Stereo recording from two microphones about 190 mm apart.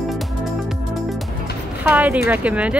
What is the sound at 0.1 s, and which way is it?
Music, centre (ahead or behind).